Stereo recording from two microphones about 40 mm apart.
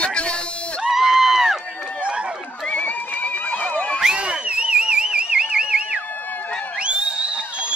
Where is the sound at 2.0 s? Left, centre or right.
Right.